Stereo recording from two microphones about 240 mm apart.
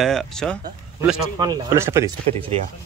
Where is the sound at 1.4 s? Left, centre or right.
Centre.